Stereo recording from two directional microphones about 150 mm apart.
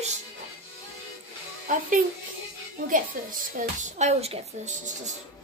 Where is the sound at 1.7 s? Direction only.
60° right (ahead or behind).